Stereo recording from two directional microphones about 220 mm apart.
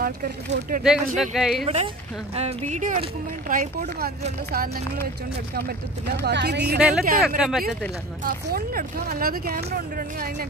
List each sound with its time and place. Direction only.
0.0 s speech: 40° right (ahead or behind)
1.1 s speech: centre (ahead or behind)
2.3 s speech: 30° right (ahead or behind); by 6.8 s 50° right (ahead or behind)
6.8 s speech: 5° right (ahead or behind)
8.2 s speech: 40° right (ahead or behind)